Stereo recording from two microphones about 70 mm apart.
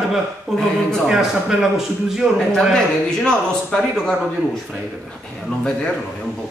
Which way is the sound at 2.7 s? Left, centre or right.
Centre.